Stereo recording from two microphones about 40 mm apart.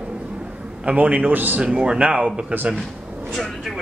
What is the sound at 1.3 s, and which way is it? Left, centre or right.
Speech, right.